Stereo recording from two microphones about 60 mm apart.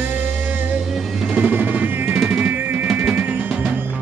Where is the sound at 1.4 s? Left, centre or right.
Right.